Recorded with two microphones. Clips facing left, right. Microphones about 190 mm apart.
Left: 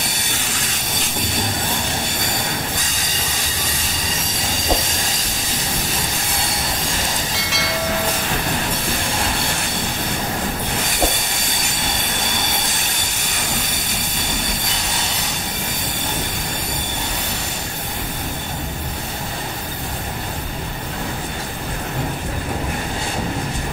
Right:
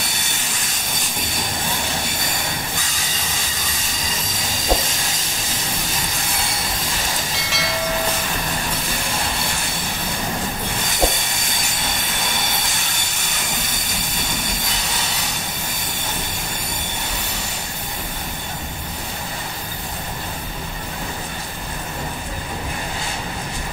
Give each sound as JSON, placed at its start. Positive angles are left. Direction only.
{"t": 7.3, "sound": "train", "side_deg": 0}